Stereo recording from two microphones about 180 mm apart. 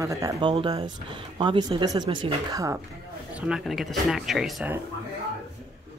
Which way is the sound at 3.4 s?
Centre (ahead or behind).